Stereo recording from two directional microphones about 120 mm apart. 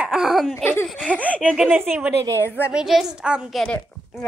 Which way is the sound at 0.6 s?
20° left (ahead or behind).